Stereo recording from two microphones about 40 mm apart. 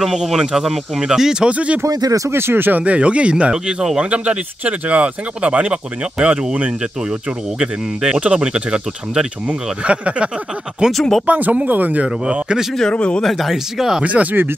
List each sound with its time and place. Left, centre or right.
0.0 s speech: centre
1.4 s speech: right
2.3 s speech: right
2.7 s speech: right
3.5 s speech: centre
4.1 s speech: right
9.5 s speech: right
10.9 s speech: centre
11.2 s speech: right
12.0 s speech: right
12.9 s speech: left
13.2 s speech: centre
14.0 s speech: right